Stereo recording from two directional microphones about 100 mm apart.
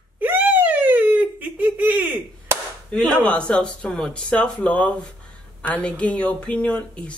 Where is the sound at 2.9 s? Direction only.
10° left (ahead or behind).